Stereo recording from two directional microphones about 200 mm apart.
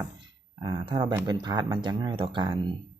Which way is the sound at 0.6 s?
25° right (ahead or behind).